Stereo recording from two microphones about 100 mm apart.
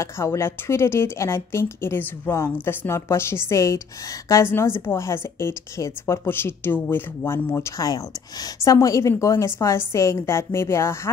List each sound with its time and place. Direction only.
0.0 s a woman's voice: 30° left (ahead or behind)